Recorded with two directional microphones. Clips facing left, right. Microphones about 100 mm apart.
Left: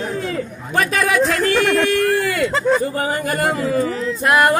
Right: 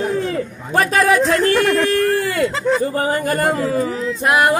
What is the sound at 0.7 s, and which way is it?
Speech, 35° right (ahead or behind).